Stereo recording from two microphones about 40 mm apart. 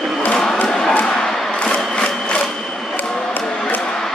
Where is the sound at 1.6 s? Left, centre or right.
Left.